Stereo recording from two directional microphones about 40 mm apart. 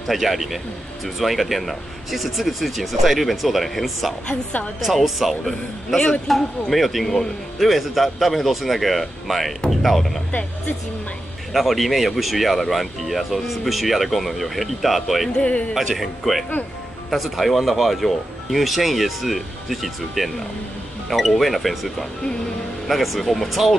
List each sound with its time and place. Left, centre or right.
0.0 s speech: centre
4.3 s a woman's voice: left
4.7 s a man's voice: centre
11.5 s speech: centre
15.3 s speech: left
15.7 s speech: centre